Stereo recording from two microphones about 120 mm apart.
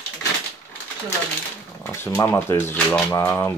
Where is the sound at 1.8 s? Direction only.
20° left (ahead or behind).